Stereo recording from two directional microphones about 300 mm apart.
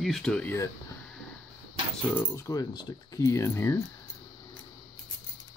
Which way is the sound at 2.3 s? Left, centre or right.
Centre.